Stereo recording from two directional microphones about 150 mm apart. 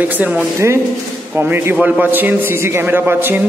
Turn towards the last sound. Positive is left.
turn(degrees=-15)  # may be behind; listen again after turning